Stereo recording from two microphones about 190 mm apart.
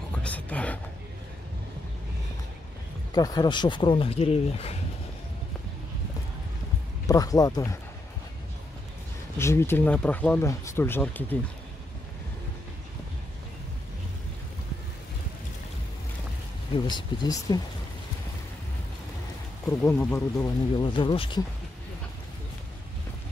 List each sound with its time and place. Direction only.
0.2 s a sound: 5° left (ahead or behind)
3.1 s speech: 20° left (ahead or behind)
7.1 s speech: 20° left (ahead or behind)
9.4 s speech: 15° left (ahead or behind)
16.7 s speech: 25° left (ahead or behind)
19.6 s speech: 15° left (ahead or behind)